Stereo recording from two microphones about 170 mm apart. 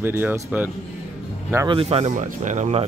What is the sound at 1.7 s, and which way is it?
Speech, 35° right (ahead or behind).